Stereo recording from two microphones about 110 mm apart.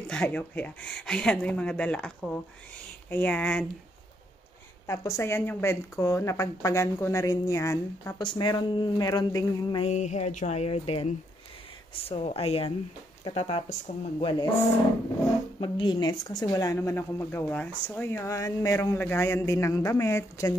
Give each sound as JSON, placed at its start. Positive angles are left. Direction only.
{"t": 0.1, "sound": "speech", "side_deg": 10}
{"t": 4.8, "sound": "speech", "side_deg": 30}
{"t": 8.2, "sound": "speech", "side_deg": 45}
{"t": 9.8, "sound": "speech", "side_deg": 85}
{"t": 15.6, "sound": "speech", "side_deg": 45}